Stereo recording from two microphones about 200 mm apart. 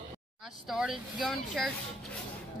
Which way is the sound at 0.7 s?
Centre (ahead or behind).